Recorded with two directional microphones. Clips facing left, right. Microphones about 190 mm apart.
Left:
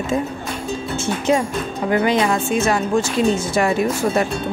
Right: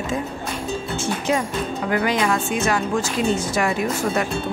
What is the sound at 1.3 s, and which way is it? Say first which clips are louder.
A woman's voice: left 4 dB; 25° left (ahead or behind).